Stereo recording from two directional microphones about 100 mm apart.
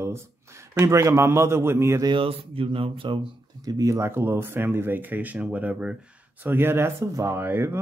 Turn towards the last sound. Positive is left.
turn(degrees=-20)  # may be behind; listen again after turning